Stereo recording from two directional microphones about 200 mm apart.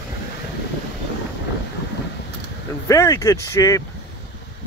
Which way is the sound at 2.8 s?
15° left (ahead or behind).